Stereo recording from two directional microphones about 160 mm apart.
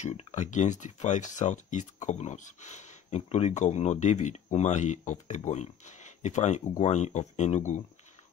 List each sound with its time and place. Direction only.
0.0 s speech: 45° left (ahead or behind)